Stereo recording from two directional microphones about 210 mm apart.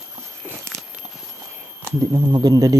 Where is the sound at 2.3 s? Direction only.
20° right (ahead or behind).